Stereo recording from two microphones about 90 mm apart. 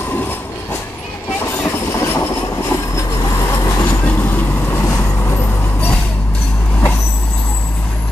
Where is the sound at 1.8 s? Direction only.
25° left (ahead or behind).